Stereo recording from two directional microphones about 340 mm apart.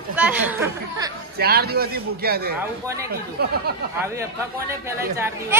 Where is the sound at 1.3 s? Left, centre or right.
Right.